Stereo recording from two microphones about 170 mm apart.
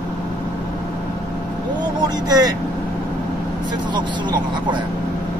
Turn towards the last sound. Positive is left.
turn(degrees=-25)  # may be behind; listen again after turning